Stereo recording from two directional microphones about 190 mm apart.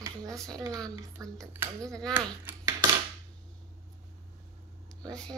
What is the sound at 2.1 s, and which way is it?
Speech, 10° right (ahead or behind).